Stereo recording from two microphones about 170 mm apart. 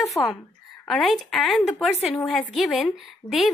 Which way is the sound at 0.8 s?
Centre (ahead or behind).